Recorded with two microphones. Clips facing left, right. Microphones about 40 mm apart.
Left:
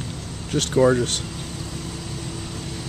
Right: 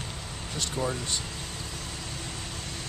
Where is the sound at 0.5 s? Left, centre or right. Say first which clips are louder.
Left 11 dB; left.